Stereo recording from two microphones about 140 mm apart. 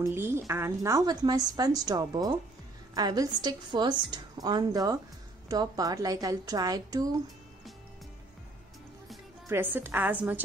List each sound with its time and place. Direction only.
0.0 s a woman's voice: 15° right (ahead or behind)
9.5 s a woman's voice: 15° right (ahead or behind)